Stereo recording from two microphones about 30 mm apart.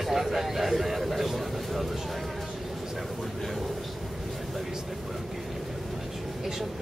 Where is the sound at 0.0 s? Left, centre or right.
Centre.